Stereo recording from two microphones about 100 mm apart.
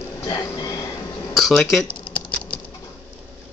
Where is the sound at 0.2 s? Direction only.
40° left (ahead or behind).